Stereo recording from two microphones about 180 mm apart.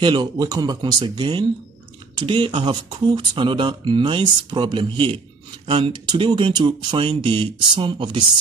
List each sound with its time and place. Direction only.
0.0 s speech: 25° right (ahead or behind)